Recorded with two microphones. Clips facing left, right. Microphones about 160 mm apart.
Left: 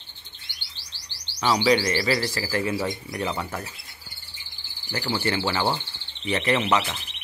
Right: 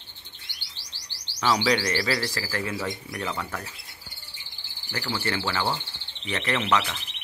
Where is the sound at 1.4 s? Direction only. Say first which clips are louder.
Left 3 dB; 10° left (ahead or behind).